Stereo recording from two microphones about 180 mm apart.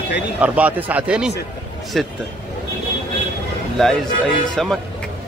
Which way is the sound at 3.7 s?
5° left (ahead or behind).